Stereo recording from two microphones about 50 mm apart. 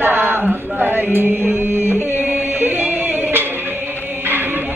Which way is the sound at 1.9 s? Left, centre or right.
Right.